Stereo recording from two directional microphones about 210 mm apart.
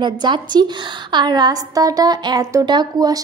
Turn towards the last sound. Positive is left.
turn(degrees=-20)  # may be behind; listen again after turning